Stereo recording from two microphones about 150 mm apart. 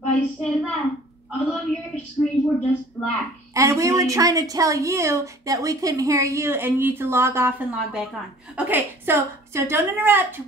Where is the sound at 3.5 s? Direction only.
20° right (ahead or behind).